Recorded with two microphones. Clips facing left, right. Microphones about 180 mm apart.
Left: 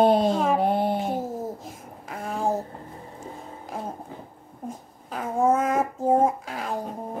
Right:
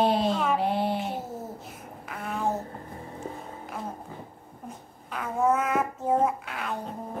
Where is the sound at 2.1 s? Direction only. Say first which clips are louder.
Left 3 dB; 35° left (ahead or behind).